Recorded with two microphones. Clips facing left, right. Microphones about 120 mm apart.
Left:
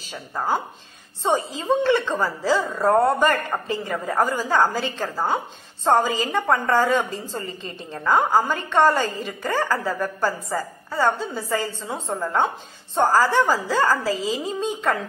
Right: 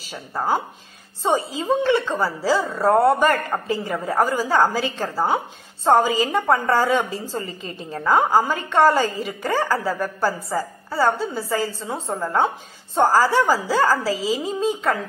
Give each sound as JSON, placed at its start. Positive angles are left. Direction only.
{"t": 0.1, "sound": "a woman's voice", "side_deg": -10}